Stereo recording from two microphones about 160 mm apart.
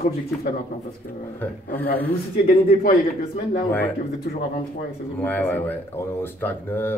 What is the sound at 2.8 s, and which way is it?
Speech, 55° left (ahead or behind).